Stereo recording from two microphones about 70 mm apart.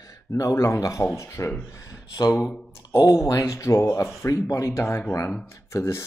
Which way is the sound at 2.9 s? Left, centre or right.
Left.